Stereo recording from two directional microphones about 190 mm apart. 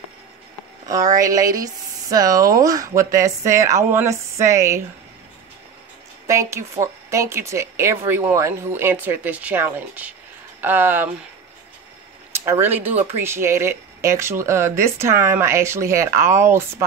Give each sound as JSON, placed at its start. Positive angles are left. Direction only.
{"t": 1.1, "sound": "speech", "side_deg": -20}
{"t": 6.2, "sound": "speech", "side_deg": -15}
{"t": 12.3, "sound": "speech", "side_deg": -15}